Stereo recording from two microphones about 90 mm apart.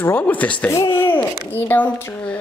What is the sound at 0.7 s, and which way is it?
Speech, 30° left (ahead or behind).